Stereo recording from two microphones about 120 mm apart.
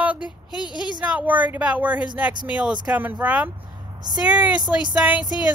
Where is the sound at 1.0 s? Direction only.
10° right (ahead or behind).